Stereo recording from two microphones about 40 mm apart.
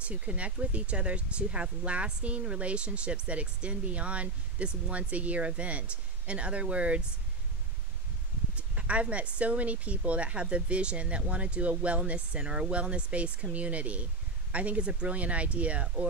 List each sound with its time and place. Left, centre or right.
0.0 s speech: right
8.5 s speech: right